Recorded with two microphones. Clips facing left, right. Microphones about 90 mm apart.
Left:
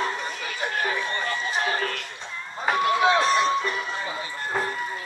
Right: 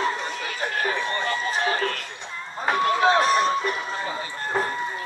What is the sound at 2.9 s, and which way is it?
Run, 40° right (ahead or behind).